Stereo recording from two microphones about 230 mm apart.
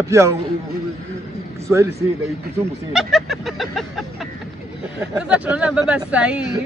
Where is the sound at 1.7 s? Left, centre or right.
Centre.